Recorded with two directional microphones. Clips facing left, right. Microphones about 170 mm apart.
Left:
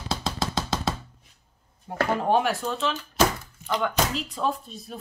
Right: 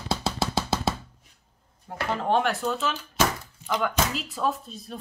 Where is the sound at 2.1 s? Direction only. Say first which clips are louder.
Left 1 dB; 10° left (ahead or behind).